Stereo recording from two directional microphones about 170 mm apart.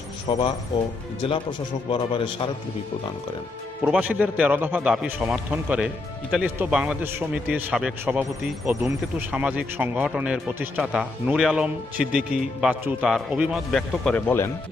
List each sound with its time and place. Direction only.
0.3 s speech: 30° left (ahead or behind)
1.9 s a man's voice: 30° left (ahead or behind)
3.8 s a man's voice: 10° right (ahead or behind); by 14.5 s 10° left (ahead or behind)